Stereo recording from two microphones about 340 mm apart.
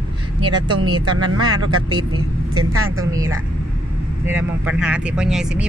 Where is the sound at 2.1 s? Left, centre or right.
Right.